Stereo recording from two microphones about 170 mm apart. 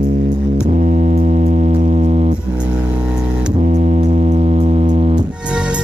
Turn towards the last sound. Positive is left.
turn(degrees=-5)  # may be behind; listen again after turning